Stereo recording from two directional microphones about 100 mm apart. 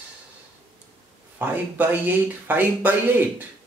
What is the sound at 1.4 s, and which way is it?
Speech, 20° right (ahead or behind).